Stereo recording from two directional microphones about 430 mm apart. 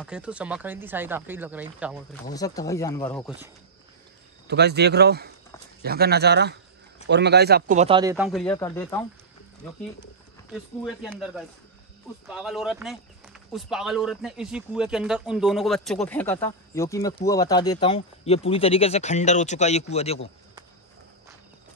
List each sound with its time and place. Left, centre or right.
0.0 s speech: centre
2.3 s speech: centre
4.5 s speech: right; by 9.0 s centre
10.5 s speech: centre